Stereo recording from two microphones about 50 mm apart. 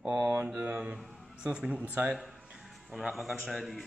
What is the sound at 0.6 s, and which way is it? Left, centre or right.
Speech, right.